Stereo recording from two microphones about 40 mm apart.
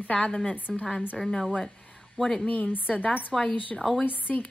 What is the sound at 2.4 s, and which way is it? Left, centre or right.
Speech, left.